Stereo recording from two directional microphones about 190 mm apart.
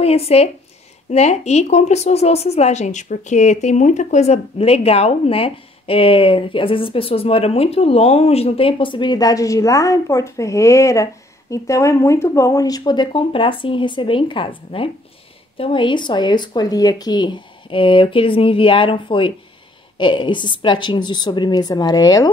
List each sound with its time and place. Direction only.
0.0 s speech: 30° left (ahead or behind)